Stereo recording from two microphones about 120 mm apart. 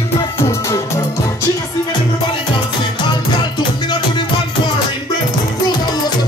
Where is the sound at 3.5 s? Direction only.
40° left (ahead or behind).